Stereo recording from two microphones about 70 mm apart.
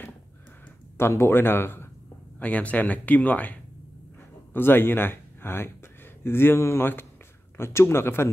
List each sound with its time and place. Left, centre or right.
0.9 s speech: left
2.3 s speech: left
4.6 s speech: left